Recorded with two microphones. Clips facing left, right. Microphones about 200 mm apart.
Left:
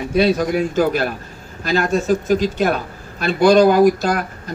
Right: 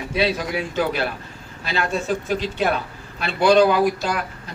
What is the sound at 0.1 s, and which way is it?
Speech, 45° left (ahead or behind).